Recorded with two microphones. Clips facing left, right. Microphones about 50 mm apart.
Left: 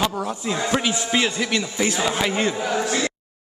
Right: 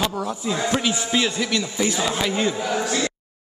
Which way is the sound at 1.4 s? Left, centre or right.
Centre.